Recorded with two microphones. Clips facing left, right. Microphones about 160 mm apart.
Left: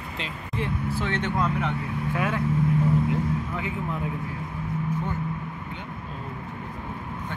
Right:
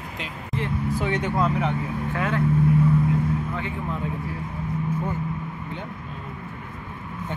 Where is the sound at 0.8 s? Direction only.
15° right (ahead or behind).